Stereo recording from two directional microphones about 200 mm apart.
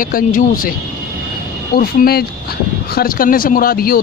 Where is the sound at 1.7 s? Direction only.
50° left (ahead or behind).